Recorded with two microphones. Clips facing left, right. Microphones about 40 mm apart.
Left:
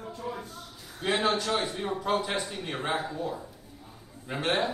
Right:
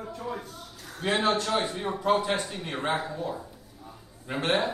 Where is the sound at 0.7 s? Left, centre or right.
Right.